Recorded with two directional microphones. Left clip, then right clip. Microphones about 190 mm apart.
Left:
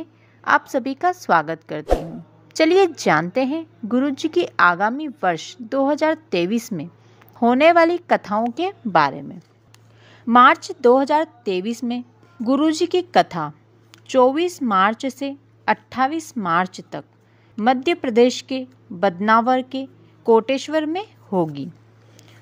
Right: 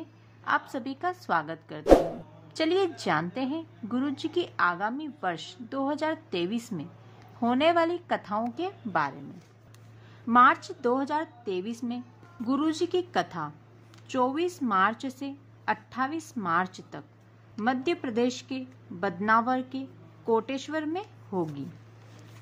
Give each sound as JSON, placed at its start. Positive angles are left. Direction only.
{"t": 0.4, "sound": "a woman's voice", "side_deg": 35}
{"t": 10.2, "sound": "a woman's voice", "side_deg": 40}